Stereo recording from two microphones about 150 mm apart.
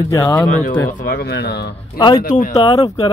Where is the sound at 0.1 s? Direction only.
20° left (ahead or behind).